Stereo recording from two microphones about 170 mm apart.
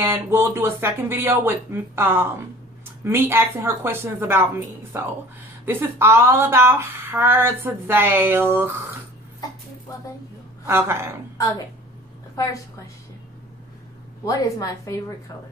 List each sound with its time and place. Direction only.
0.0 s speech: 15° right (ahead or behind)
10.7 s speech: 15° right (ahead or behind)
14.2 s a woman's voice: 20° left (ahead or behind)